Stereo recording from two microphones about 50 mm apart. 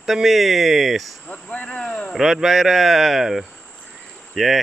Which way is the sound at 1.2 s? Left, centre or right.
Left.